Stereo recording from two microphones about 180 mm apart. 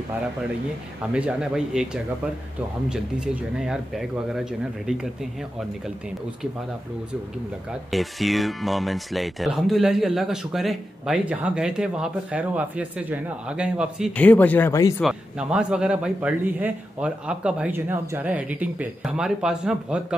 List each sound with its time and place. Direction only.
1.1 s speech: 5° right (ahead or behind)
2.9 s speech: 5° right (ahead or behind)
7.9 s speech: centre (ahead or behind)
14.1 s speech: 10° left (ahead or behind)
15.0 s speech: 5° right (ahead or behind)